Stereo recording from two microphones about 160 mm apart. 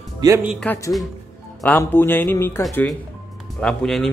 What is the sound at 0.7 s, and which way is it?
A woman's voice, 20° left (ahead or behind).